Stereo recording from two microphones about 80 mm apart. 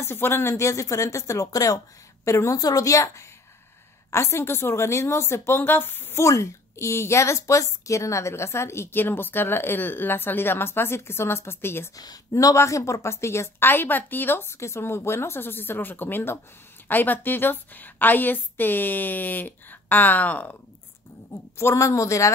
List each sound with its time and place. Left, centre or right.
0.0 s a woman's voice: left
6.2 s a woman's voice: left
12.0 s a woman's voice: left; by 20.5 s centre
21.5 s a woman's voice: left